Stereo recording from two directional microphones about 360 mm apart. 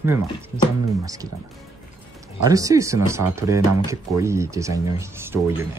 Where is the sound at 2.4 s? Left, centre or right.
Centre.